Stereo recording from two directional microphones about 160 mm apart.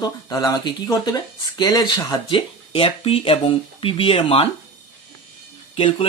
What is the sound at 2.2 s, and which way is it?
Speech, 35° left (ahead or behind).